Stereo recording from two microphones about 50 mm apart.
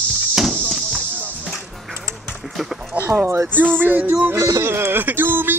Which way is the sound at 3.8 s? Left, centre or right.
Right.